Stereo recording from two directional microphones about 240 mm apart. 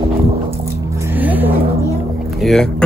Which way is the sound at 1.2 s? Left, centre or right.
Centre.